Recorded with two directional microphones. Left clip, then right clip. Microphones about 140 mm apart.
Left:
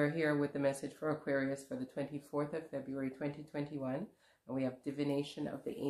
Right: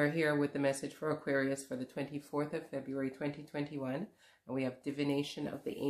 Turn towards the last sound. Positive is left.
turn(degrees=-30)  # may be behind; listen again after turning